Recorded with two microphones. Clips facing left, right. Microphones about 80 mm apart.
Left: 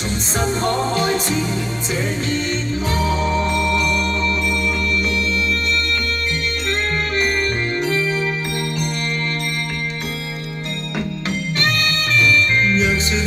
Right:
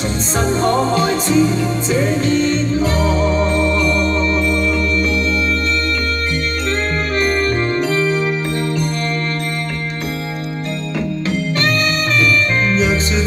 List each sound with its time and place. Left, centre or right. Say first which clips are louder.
0.5 s music: right 5 dB; right
12.7 s music: right 2 dB; right